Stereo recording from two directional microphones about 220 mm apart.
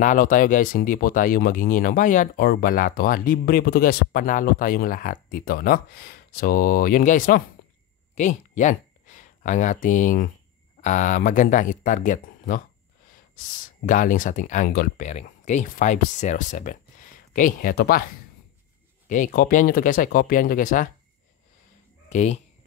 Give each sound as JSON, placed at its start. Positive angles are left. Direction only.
{"t": 0.0, "sound": "speech", "side_deg": 35}
{"t": 13.8, "sound": "speech", "side_deg": 35}
{"t": 19.0, "sound": "speech", "side_deg": 35}
{"t": 22.1, "sound": "speech", "side_deg": 30}